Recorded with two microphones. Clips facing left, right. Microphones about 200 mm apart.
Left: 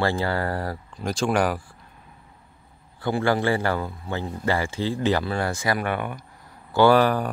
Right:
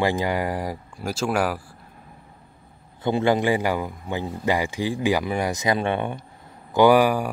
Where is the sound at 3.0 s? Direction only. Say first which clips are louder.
Right 2 dB; 20° right (ahead or behind).